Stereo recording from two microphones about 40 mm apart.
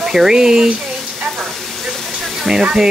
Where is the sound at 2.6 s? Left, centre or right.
Right.